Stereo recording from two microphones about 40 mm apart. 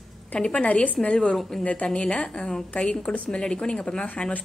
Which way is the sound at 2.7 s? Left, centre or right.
Left.